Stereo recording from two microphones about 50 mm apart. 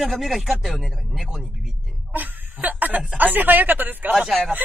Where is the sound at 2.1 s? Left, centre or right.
Right.